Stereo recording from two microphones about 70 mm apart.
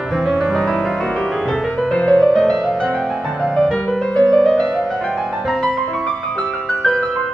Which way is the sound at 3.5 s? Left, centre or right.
Centre.